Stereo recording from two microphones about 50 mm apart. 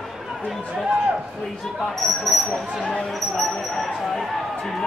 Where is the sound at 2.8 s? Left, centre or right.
Centre.